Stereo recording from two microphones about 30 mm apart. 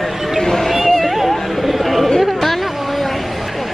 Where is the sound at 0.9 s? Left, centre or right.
Centre.